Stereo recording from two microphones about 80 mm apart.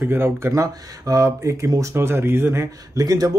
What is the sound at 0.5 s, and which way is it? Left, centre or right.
Speech, right.